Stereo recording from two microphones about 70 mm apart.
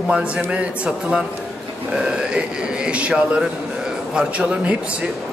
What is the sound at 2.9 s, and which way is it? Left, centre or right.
A man's voice, centre.